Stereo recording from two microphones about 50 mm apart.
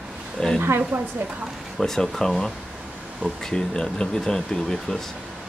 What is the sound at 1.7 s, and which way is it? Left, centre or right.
Speech, centre.